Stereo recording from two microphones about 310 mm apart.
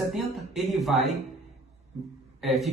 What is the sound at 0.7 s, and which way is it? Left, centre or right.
Speech, centre.